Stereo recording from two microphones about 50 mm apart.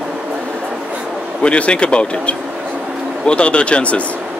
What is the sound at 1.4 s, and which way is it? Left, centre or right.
Speech, left.